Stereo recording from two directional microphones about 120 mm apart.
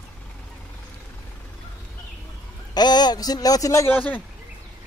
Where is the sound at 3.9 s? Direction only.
15° left (ahead or behind).